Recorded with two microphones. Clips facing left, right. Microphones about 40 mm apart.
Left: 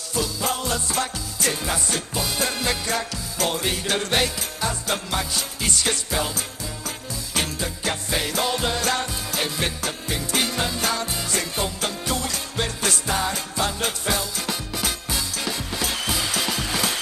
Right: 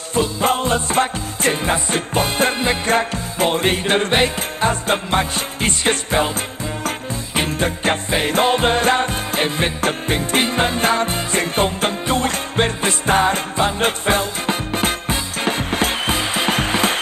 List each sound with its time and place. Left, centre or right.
0.1 s music: right
7.5 s music: right